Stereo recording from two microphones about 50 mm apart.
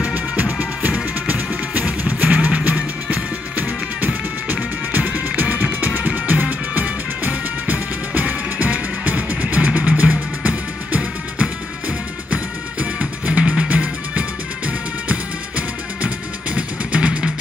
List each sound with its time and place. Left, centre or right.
0.1 s music: right